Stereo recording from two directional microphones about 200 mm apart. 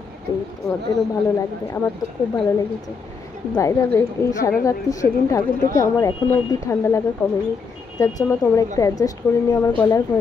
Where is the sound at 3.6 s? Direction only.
15° left (ahead or behind).